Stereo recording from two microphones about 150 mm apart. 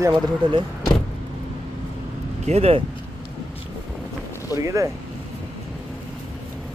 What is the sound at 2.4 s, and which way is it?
Speech, 45° right (ahead or behind).